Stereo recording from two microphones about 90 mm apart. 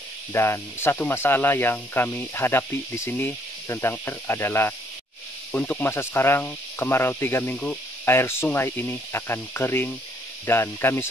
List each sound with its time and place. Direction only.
0.3 s speech: 25° left (ahead or behind)